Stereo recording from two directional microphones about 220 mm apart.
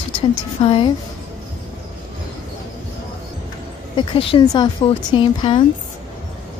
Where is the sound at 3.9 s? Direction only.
25° left (ahead or behind).